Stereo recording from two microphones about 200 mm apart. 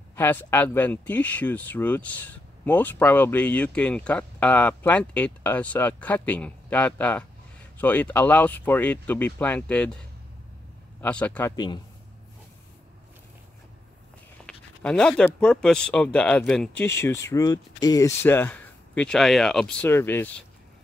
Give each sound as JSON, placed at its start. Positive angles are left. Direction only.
{"t": 0.1, "sound": "speech", "side_deg": 10}
{"t": 11.5, "sound": "a man's voice", "side_deg": 20}
{"t": 14.4, "sound": "speech", "side_deg": 5}